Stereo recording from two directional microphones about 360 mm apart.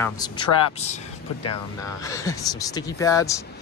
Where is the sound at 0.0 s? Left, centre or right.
Centre.